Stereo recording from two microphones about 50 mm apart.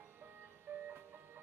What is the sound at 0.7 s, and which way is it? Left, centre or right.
Music, right.